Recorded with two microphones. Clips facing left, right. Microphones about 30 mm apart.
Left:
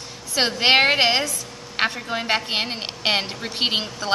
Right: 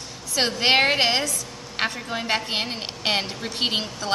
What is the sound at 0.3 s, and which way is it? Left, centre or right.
A woman's voice, centre.